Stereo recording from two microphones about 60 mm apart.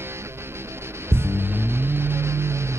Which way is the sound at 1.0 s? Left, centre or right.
Right.